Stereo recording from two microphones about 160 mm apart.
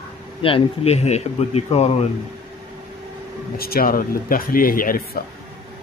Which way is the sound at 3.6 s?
70° left (ahead or behind).